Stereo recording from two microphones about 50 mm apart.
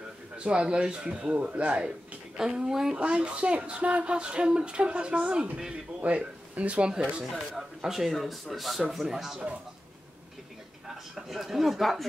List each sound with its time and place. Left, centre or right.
0.4 s speech: right
3.0 s speech: right
5.9 s speech: right
7.5 s speech: centre
10.9 s speech: centre